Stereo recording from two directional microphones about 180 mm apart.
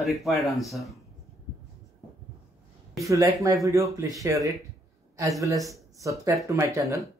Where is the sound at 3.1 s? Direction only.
20° right (ahead or behind).